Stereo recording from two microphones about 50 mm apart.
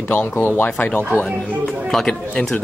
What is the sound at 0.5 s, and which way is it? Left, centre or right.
Speech, left.